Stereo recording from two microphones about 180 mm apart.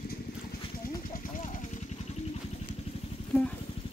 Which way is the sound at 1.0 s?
50° left (ahead or behind).